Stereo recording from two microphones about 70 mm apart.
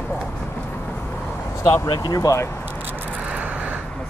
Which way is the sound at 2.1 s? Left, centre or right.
Left.